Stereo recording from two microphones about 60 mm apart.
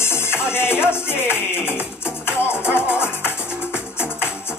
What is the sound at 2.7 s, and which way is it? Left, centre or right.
Music, left.